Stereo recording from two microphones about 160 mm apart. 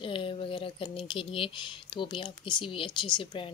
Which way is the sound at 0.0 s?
30° left (ahead or behind).